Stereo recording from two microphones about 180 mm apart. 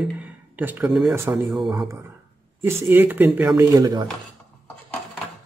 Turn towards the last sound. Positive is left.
turn(degrees=-20)  # may be behind; listen again after turning